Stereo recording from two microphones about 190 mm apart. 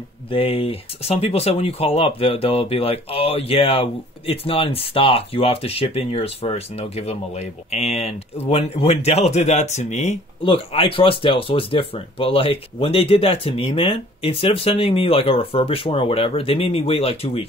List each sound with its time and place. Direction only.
0.3 s speech: 30° left (ahead or behind)